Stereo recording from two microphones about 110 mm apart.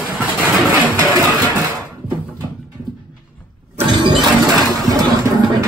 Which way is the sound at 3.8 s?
45° right (ahead or behind).